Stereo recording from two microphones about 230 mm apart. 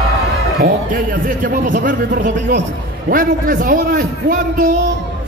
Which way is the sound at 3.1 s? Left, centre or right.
Right.